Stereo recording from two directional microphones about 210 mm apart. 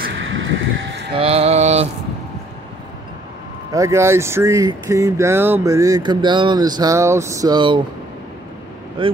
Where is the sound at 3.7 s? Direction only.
15° right (ahead or behind).